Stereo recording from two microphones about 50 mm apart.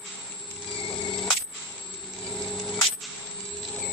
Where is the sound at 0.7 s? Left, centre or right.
Centre.